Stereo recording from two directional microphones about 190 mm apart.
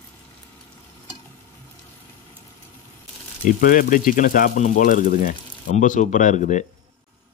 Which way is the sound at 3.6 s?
45° left (ahead or behind).